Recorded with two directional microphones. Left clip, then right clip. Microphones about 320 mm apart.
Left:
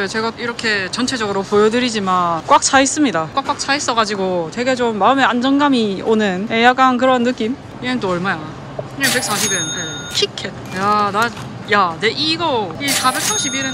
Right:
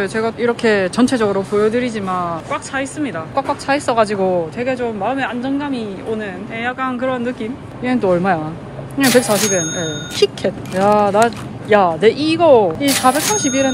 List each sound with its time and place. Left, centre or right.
0.0 s speech: centre